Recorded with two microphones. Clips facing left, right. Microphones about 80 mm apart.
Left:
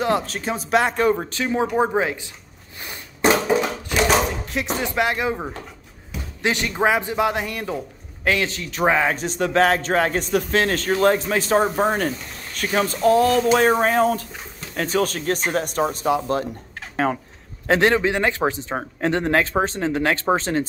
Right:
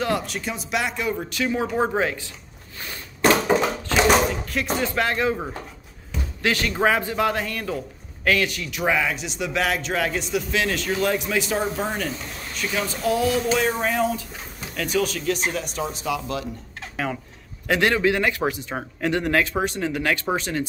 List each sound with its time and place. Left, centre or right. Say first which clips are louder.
0.0 s a man's voice: left 3 dB; left
2.8 s a sound: even; left
4.5 s a man's voice: even; left
14.8 s a man's voice: left 2 dB; left